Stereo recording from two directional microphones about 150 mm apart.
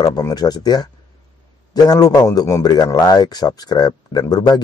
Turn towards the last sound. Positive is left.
turn(degrees=25)  # may be behind; listen again after turning